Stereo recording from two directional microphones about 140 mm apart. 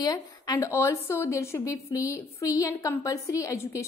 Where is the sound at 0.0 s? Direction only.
25° left (ahead or behind).